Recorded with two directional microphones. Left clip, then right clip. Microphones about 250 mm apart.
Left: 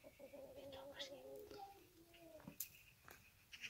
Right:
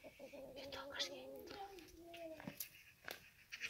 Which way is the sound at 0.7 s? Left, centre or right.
Right.